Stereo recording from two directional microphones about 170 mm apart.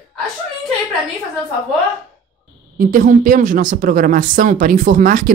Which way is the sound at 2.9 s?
50° right (ahead or behind).